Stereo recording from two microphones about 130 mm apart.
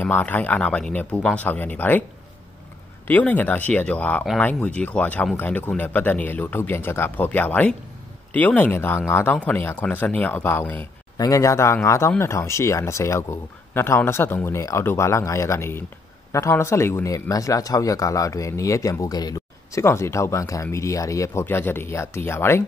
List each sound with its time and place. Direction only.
0.0 s speech: 15° left (ahead or behind)
3.1 s speech: 10° left (ahead or behind)
11.1 s a man's voice: 25° left (ahead or behind)